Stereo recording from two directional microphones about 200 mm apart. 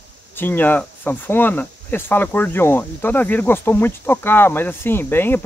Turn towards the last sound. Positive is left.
turn(degrees=10)  # may be behind; listen again after turning